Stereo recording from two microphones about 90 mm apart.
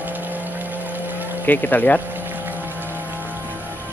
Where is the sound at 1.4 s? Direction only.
20° left (ahead or behind).